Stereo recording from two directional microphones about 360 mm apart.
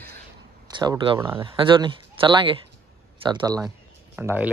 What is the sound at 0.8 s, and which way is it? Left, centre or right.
Speech, centre.